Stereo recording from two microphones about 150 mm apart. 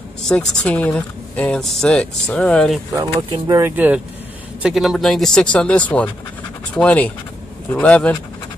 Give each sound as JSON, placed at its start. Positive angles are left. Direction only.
{"t": 0.2, "sound": "speech", "side_deg": 5}
{"t": 3.2, "sound": "speech", "side_deg": -25}
{"t": 3.7, "sound": "speech", "side_deg": -10}